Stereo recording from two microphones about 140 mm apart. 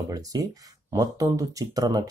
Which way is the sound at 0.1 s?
25° right (ahead or behind).